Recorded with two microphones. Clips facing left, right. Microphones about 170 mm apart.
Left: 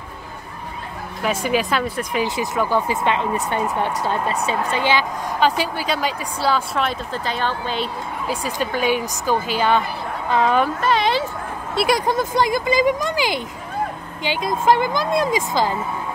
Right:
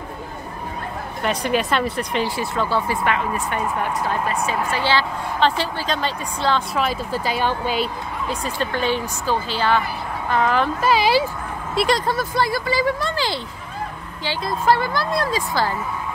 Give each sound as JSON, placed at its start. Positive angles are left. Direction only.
{"t": 1.2, "sound": "speech", "side_deg": 5}
{"t": 2.5, "sound": "speech", "side_deg": 15}
{"t": 4.8, "sound": "a woman's voice", "side_deg": 15}
{"t": 6.8, "sound": "speech", "side_deg": -5}
{"t": 8.3, "sound": "a woman's voice", "side_deg": 10}
{"t": 10.6, "sound": "speech", "side_deg": -5}
{"t": 11.7, "sound": "a woman's voice", "side_deg": 10}